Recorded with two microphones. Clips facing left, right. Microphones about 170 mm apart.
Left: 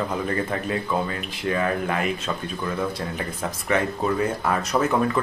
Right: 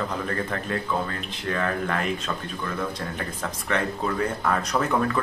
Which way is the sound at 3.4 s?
10° left (ahead or behind).